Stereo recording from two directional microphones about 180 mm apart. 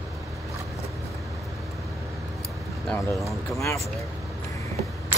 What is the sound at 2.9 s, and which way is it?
Speech, centre (ahead or behind).